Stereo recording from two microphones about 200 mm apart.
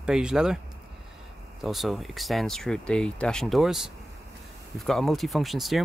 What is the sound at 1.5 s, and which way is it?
Speech, centre (ahead or behind).